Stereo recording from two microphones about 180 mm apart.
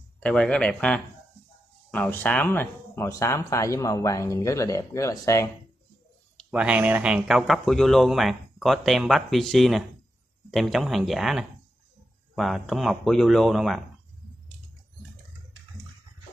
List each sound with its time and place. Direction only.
0.2 s speech: 5° left (ahead or behind)
6.5 s speech: 5° right (ahead or behind)